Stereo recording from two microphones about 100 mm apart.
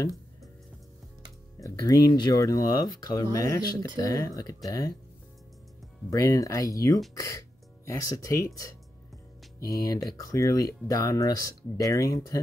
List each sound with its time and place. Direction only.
1.6 s speech: 40° left (ahead or behind)
6.0 s speech: 35° left (ahead or behind)
9.7 s speech: 40° left (ahead or behind)